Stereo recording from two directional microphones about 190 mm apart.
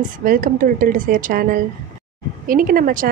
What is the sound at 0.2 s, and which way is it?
A woman's voice, 45° right (ahead or behind).